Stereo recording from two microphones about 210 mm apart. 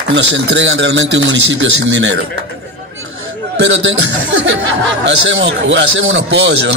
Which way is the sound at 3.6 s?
60° right (ahead or behind).